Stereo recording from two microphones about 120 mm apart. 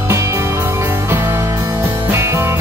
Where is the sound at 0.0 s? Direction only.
20° right (ahead or behind).